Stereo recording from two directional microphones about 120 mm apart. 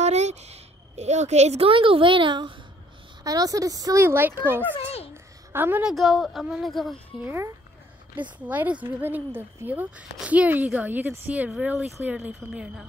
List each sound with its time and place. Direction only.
0.0 s a sound: 70° right (ahead or behind)
1.7 s a woman's voice: 45° right (ahead or behind)
3.3 s speech: 30° right (ahead or behind)
5.1 s a sound: 20° right (ahead or behind)
5.9 s speech: centre (ahead or behind)
7.2 s speech: 20° right (ahead or behind)